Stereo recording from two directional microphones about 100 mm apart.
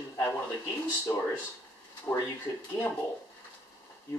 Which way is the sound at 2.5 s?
35° left (ahead or behind).